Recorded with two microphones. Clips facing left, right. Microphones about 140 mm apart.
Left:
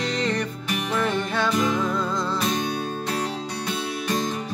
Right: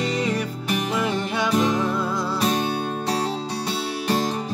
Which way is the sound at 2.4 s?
35° right (ahead or behind).